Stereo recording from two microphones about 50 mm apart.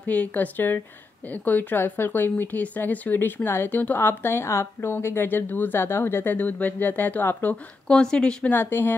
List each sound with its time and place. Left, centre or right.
0.0 s speech: left
3.4 s a woman's voice: left
3.7 s a woman's voice: left
5.0 s a woman's voice: left
5.8 s a woman's voice: left
6.3 s speech: left
7.9 s speech: centre
8.5 s a woman's voice: left